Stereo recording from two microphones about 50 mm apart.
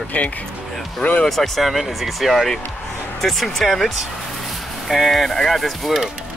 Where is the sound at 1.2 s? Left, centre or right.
Centre.